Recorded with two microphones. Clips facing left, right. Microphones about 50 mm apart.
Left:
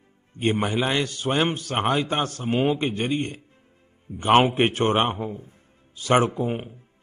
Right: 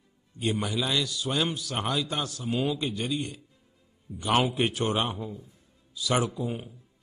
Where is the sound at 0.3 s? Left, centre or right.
Left.